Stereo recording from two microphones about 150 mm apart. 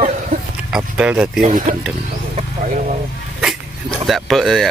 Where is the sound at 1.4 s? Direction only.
60° right (ahead or behind).